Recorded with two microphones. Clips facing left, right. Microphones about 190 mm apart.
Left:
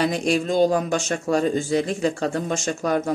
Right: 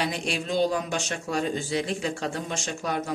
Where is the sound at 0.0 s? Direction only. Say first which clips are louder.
Left 8 dB; 45° left (ahead or behind).